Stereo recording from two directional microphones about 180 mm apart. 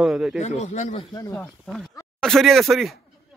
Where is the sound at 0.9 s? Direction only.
25° left (ahead or behind).